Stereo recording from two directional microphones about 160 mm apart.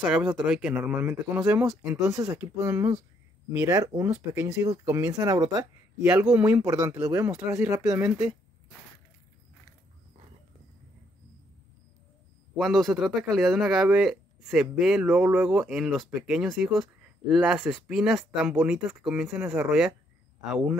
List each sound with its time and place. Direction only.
0.1 s speech: 10° right (ahead or behind)
6.3 s speech: 10° right (ahead or behind)
6.6 s speech: 20° right (ahead or behind)
12.5 s speech: centre (ahead or behind)